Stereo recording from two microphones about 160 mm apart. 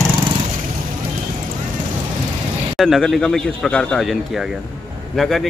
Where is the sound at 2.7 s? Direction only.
Centre (ahead or behind).